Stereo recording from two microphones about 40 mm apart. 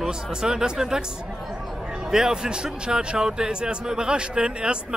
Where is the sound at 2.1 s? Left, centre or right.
Centre.